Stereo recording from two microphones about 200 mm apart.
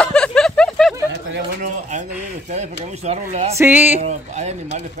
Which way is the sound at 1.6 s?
40° right (ahead or behind).